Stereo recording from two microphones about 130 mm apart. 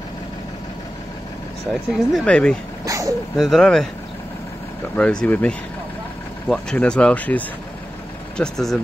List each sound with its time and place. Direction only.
1.7 s speech: centre (ahead or behind)
2.2 s speech: 10° left (ahead or behind)
2.8 s vehicle: 25° right (ahead or behind)
3.3 s speech: centre (ahead or behind)
4.9 s speech: 10° left (ahead or behind)